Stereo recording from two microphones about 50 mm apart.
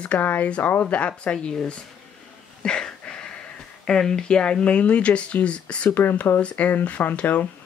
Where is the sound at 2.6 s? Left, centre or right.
Centre.